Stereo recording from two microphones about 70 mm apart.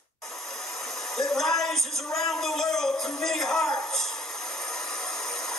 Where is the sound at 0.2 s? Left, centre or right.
Centre.